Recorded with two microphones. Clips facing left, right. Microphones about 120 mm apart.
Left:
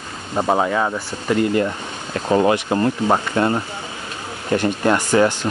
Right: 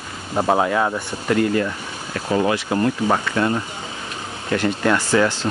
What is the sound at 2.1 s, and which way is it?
Speech, 40° left (ahead or behind).